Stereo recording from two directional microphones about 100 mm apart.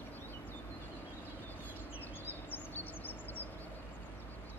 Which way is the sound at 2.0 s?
20° left (ahead or behind).